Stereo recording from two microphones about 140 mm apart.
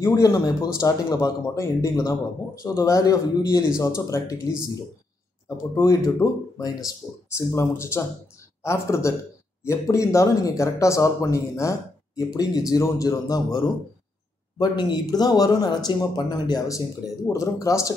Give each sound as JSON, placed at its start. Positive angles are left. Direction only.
{"t": 0.0, "sound": "speech", "side_deg": 25}
{"t": 5.8, "sound": "speech", "side_deg": 25}